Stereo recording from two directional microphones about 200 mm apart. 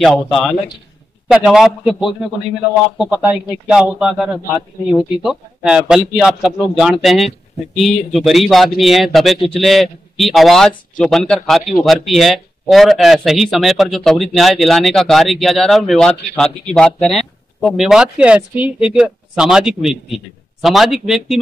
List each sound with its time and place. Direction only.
0.0 s speech: centre (ahead or behind)